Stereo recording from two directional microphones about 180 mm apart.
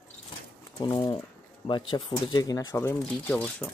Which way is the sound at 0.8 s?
25° left (ahead or behind).